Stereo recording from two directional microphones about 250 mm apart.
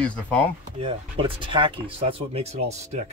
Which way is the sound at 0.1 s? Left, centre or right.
Centre.